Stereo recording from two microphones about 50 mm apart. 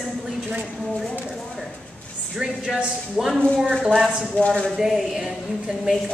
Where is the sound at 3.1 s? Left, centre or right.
Centre.